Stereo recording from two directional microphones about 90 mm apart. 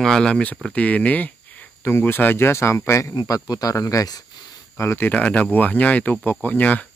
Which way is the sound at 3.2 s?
45° left (ahead or behind).